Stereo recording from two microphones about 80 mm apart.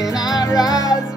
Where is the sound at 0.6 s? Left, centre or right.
Left.